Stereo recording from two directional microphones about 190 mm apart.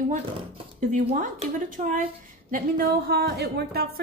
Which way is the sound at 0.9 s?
45° right (ahead or behind).